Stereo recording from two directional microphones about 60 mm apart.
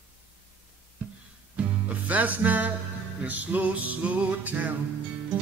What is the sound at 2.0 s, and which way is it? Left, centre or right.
Music, right.